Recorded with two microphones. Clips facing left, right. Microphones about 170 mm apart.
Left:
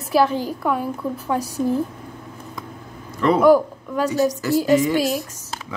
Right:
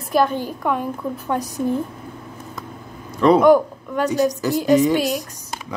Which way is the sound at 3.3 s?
5° left (ahead or behind).